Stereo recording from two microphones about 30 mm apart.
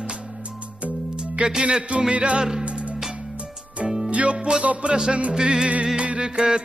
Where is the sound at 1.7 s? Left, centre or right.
Right.